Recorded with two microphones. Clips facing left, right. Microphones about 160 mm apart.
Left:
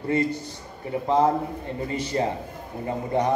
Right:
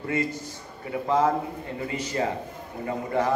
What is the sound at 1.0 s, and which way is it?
A man's voice, 30° left (ahead or behind).